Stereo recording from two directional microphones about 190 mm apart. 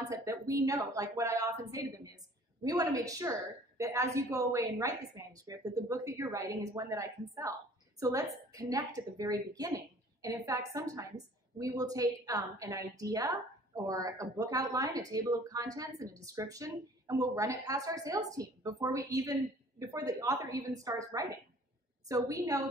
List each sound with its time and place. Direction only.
0.0 s a woman's voice: 15° right (ahead or behind)